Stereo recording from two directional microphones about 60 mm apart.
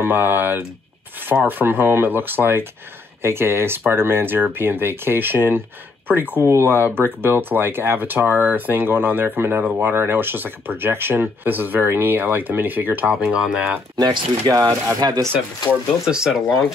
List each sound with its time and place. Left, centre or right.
0.0 s speech: right
13.1 s speech: centre
14.4 s speech: right
16.1 s speech: centre